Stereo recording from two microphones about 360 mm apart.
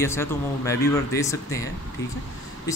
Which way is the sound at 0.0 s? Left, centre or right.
Centre.